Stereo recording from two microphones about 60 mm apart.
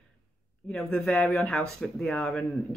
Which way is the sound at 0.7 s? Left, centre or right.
Centre.